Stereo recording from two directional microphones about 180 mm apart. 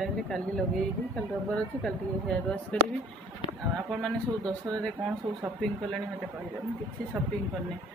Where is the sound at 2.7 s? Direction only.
5° left (ahead or behind).